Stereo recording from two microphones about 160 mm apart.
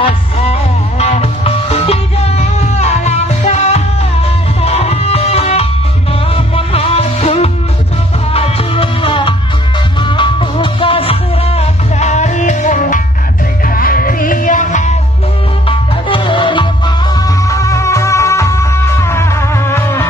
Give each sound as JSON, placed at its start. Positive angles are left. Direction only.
{"t": 0.0, "sound": "music", "side_deg": 40}
{"t": 13.7, "sound": "music", "side_deg": 60}
{"t": 16.1, "sound": "music", "side_deg": 30}